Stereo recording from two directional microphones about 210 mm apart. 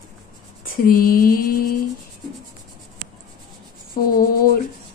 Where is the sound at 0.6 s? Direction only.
45° left (ahead or behind).